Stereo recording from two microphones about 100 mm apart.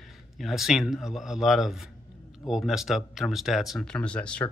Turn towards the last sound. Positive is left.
turn(degrees=15)  # may be behind; listen again after turning